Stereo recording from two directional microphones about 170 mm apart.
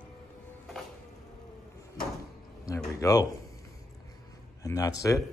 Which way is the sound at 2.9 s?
20° left (ahead or behind).